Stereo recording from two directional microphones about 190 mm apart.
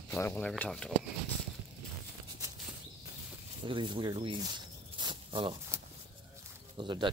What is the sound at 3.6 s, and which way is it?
Speech, 25° right (ahead or behind).